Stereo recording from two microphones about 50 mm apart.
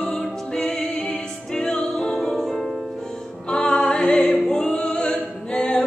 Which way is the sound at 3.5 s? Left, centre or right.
Centre.